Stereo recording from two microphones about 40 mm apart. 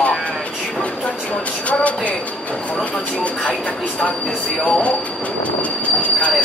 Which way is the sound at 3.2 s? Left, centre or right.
Left.